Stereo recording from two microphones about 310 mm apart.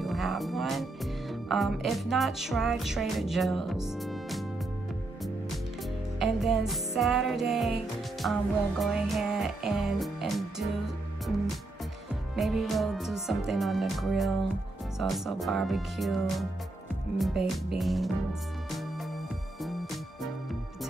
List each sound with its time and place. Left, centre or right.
0.0 s speech: centre
6.1 s music: centre
12.4 s music: centre